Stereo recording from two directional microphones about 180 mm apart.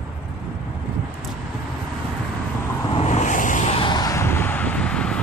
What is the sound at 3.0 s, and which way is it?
Vehicle, 40° left (ahead or behind).